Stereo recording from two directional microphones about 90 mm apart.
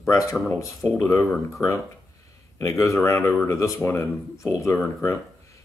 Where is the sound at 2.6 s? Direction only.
35° left (ahead or behind).